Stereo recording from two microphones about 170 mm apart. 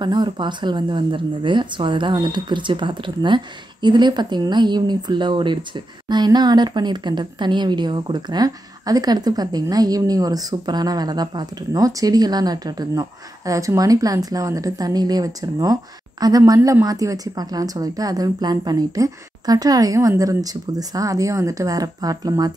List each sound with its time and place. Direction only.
0.0 s speech: 25° right (ahead or behind)